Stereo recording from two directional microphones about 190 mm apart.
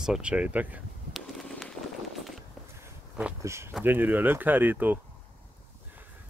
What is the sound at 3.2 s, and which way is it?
Speech, 10° right (ahead or behind).